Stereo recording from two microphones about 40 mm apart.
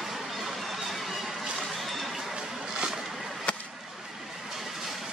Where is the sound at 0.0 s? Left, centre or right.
Centre.